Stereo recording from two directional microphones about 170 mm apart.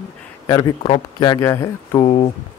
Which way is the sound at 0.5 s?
20° left (ahead or behind).